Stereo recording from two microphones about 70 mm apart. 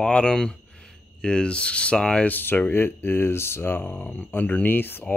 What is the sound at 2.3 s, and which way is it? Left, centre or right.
Speech, left.